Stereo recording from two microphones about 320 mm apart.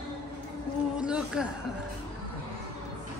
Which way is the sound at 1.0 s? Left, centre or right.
Centre.